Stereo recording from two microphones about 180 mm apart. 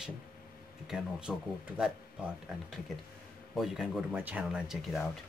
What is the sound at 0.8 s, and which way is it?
Speech, centre (ahead or behind).